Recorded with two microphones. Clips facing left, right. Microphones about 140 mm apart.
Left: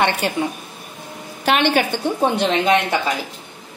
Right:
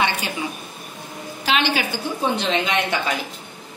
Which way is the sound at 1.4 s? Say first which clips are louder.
Left 5 dB; 55° left (ahead or behind).